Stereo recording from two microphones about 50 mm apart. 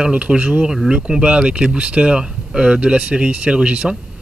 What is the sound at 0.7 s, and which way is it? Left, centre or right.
Speech, centre.